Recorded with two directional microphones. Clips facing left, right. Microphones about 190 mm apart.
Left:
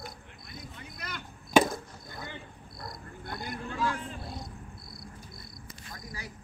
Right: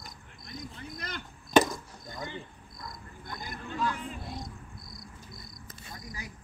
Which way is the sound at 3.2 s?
65° left (ahead or behind).